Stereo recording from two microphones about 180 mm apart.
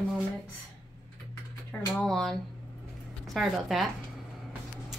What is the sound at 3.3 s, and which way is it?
Speech, centre (ahead or behind).